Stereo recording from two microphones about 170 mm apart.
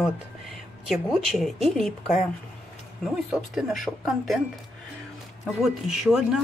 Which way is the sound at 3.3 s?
5° right (ahead or behind).